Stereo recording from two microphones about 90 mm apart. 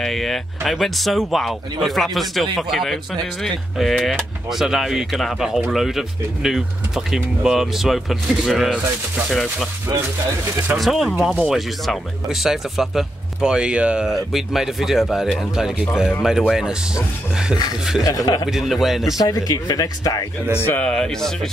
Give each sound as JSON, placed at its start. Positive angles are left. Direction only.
{"t": 0.0, "sound": "speech", "side_deg": 0}
{"t": 10.8, "sound": "speech", "side_deg": 0}
{"t": 18.0, "sound": "speech", "side_deg": 45}
{"t": 18.5, "sound": "speech", "side_deg": 0}
{"t": 19.1, "sound": "speech", "side_deg": 45}
{"t": 20.5, "sound": "speech", "side_deg": 25}
{"t": 20.8, "sound": "speech", "side_deg": 10}